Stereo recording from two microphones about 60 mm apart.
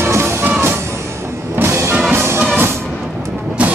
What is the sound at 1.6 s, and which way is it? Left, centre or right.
Music, right.